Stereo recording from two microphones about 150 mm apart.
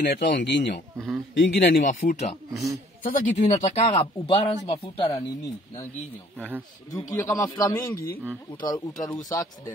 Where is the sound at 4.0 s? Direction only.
35° left (ahead or behind).